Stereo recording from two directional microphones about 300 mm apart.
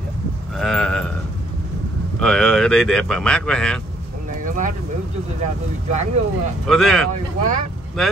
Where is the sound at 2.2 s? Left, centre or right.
Centre.